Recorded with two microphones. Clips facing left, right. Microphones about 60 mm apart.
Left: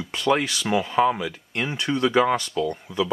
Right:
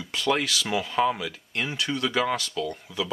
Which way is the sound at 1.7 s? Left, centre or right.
Left.